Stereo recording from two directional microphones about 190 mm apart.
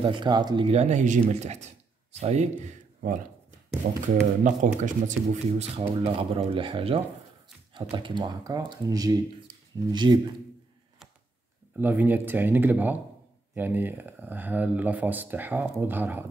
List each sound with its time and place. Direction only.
0.0 s speech: 25° right (ahead or behind)
11.7 s speech: 10° right (ahead or behind)